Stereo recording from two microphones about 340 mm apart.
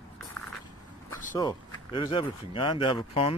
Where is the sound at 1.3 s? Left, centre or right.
Centre.